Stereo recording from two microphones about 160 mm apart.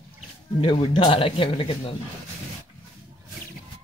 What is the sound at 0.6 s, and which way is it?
A man's voice, 30° left (ahead or behind).